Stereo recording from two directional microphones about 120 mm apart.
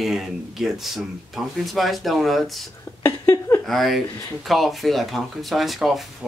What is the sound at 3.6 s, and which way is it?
Speech, centre (ahead or behind).